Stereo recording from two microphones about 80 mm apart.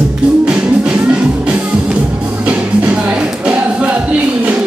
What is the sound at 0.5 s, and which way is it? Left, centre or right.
Music, centre.